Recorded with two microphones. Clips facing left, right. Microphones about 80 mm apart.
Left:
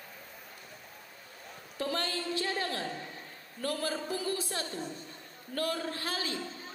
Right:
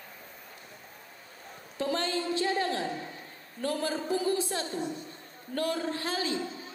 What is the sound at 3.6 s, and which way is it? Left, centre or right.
A woman's voice, right.